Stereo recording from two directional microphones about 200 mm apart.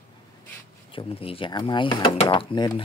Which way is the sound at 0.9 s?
25° left (ahead or behind).